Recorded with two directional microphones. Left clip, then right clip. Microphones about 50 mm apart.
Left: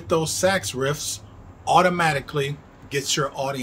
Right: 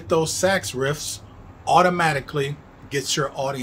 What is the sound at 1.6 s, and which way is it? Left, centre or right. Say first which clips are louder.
A man's voice: right 1 dB; right.